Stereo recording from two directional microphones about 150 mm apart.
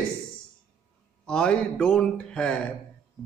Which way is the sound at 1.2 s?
5° left (ahead or behind).